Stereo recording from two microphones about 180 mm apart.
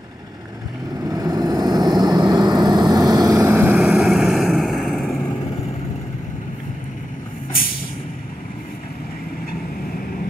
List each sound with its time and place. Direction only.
1.0 s vehicle: 20° right (ahead or behind)
3.7 s vehicle: centre (ahead or behind)